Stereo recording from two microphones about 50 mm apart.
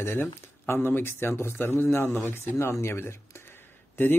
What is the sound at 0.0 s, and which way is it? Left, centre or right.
Speech, left.